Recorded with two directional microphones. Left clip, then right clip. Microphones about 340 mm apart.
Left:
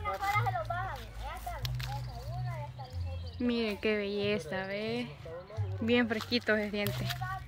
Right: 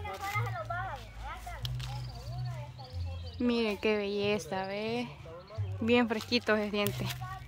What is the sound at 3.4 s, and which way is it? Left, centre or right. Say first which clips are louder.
A woman's voice: right 2 dB; centre.